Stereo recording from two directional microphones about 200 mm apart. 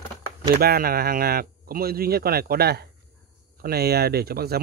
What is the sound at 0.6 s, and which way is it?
Speech, 50° right (ahead or behind).